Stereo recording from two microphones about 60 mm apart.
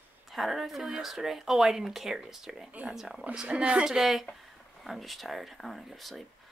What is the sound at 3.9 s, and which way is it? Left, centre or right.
Speech, centre.